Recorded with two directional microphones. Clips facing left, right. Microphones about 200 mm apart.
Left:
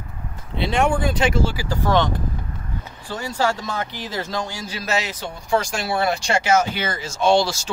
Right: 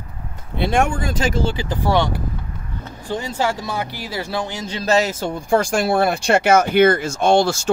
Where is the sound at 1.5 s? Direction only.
25° right (ahead or behind).